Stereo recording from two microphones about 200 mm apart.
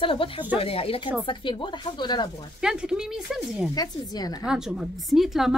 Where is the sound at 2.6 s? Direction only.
5° right (ahead or behind).